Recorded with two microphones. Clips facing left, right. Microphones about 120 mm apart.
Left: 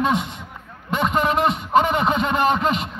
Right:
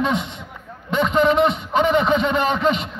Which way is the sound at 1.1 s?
45° left (ahead or behind).